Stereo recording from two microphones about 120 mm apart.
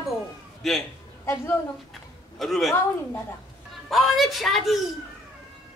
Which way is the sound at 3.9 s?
Centre (ahead or behind).